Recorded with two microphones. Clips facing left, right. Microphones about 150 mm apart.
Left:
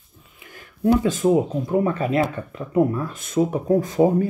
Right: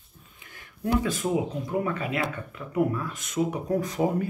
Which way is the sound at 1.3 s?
35° left (ahead or behind).